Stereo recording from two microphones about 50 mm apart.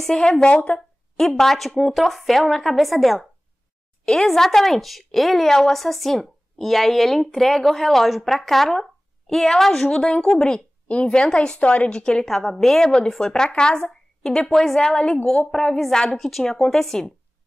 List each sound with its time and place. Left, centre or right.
0.0 s a woman's voice: centre
0.7 s a woman's voice: centre
4.0 s a woman's voice: centre
9.8 s a woman's voice: centre
12.3 s a woman's voice: centre
14.5 s a woman's voice: centre